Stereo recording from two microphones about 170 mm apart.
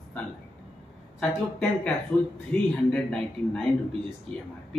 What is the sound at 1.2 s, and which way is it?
Speech, 5° left (ahead or behind).